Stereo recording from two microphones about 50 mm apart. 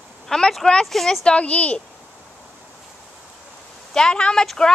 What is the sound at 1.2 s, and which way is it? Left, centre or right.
Speech, left.